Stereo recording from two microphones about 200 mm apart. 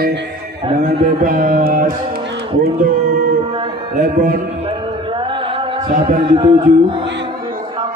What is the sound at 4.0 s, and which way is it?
Speech, 40° right (ahead or behind).